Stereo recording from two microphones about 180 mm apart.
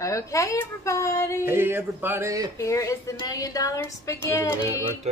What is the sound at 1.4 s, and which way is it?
Speech, 10° right (ahead or behind).